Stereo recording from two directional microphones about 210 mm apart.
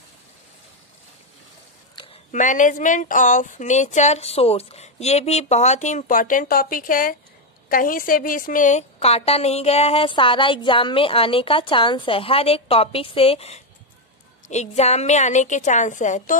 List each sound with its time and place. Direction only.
2.3 s a woman's voice: 35° left (ahead or behind)